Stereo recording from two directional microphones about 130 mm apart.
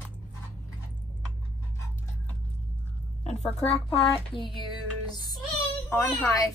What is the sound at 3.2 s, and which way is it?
A woman's voice, 55° left (ahead or behind).